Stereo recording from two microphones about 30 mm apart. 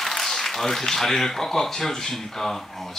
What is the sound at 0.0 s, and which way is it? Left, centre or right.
Speech, centre.